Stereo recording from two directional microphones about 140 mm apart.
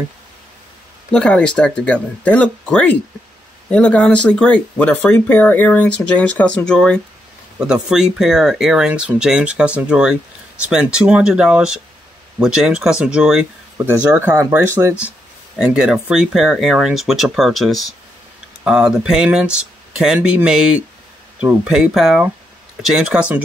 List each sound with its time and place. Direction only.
1.1 s speech: 5° left (ahead or behind)
14.3 s speech: 20° right (ahead or behind)
15.5 s speech: 5° right (ahead or behind)